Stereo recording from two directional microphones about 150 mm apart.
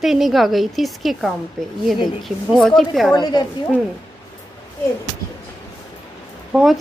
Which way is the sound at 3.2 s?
30° left (ahead or behind).